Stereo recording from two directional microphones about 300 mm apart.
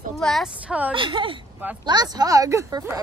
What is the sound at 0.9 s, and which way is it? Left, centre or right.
Speech, centre.